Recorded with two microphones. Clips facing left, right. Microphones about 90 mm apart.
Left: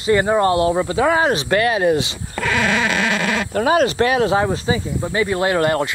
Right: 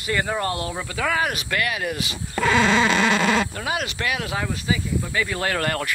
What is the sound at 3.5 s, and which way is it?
Speech, 35° left (ahead or behind).